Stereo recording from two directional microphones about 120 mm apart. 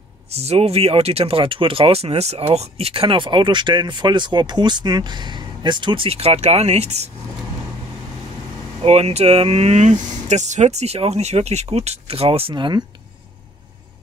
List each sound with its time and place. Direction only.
0.3 s speech: 60° right (ahead or behind)
8.8 s speech: 60° right (ahead or behind); by 12.8 s 40° right (ahead or behind)